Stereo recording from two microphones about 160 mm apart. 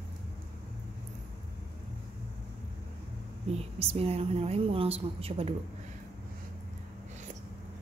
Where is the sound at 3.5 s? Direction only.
40° right (ahead or behind).